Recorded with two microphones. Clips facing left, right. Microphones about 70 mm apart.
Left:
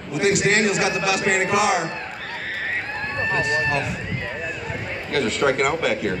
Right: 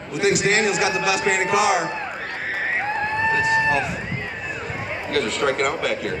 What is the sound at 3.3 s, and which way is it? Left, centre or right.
Speech, centre.